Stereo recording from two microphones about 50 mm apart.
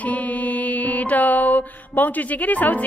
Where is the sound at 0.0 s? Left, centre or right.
Left.